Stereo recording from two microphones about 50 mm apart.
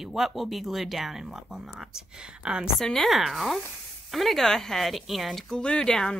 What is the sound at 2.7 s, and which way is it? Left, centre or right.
A woman's voice, centre.